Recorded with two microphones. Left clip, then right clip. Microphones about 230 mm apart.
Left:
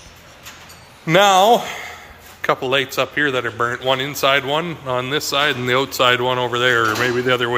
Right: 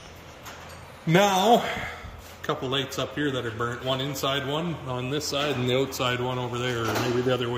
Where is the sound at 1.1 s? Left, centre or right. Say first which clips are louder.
Left 8 dB; centre.